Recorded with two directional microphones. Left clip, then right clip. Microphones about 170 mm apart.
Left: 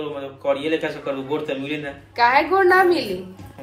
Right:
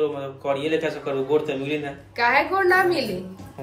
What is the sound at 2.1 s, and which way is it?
A woman's voice, 10° left (ahead or behind).